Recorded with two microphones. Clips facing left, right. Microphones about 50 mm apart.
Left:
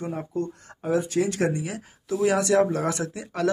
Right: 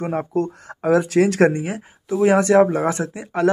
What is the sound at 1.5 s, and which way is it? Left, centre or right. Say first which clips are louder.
Speech: right 5 dB; right.